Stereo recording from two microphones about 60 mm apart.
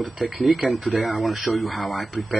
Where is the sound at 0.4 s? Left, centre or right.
Centre.